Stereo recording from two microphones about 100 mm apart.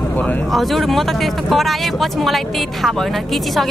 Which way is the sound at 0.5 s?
Centre (ahead or behind).